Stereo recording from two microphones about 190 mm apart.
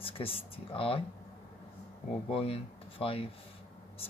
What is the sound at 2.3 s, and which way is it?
Speech, 30° left (ahead or behind).